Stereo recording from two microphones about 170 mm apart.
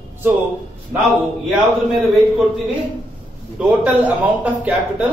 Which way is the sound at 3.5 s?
10° right (ahead or behind).